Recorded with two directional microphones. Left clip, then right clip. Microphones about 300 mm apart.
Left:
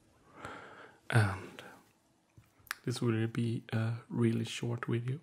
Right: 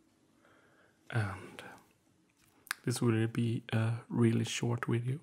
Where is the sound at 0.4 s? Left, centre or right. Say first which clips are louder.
Left 18 dB; left.